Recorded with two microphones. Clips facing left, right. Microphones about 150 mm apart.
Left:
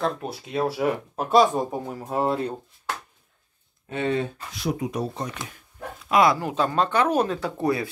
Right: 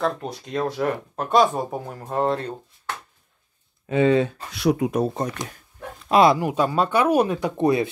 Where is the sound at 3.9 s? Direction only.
90° right.